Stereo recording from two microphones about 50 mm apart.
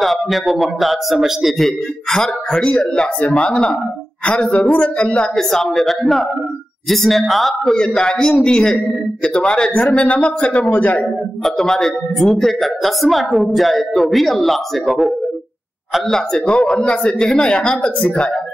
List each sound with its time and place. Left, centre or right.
0.0 s a woman's voice: centre
1.6 s a man's voice: centre; by 5.3 s left
5.3 s a man's voice: centre
7.7 s a man's voice: centre
11.4 s a woman's voice: centre
16.1 s a man's voice: centre